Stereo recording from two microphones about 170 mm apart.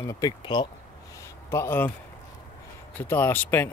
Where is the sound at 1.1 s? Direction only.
15° left (ahead or behind).